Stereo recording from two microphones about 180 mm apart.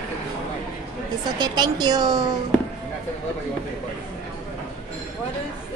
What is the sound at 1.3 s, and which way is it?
Speech, 25° right (ahead or behind).